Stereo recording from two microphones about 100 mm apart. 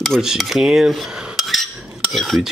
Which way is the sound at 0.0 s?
Centre (ahead or behind).